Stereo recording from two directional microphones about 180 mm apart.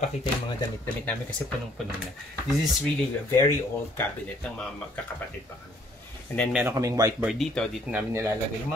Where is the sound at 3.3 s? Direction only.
15° left (ahead or behind).